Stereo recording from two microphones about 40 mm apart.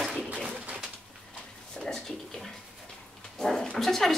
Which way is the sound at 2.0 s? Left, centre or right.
Centre.